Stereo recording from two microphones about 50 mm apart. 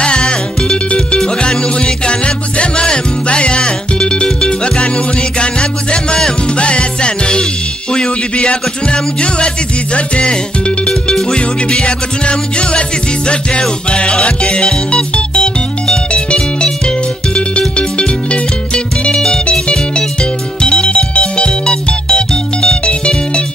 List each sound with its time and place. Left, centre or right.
0.0 s music: centre